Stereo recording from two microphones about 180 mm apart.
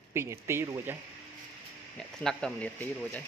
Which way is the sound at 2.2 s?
5° left (ahead or behind).